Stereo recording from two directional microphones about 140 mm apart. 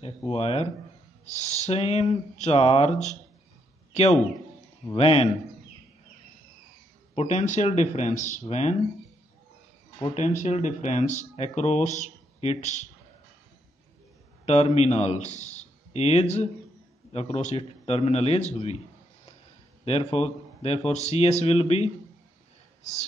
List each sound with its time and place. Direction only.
0.0 s a man's voice: 45° left (ahead or behind)
7.2 s speech: 55° left (ahead or behind)
10.1 s speech: 60° left (ahead or behind)
14.4 s a man's voice: 50° left (ahead or behind)
19.8 s speech: 45° left (ahead or behind)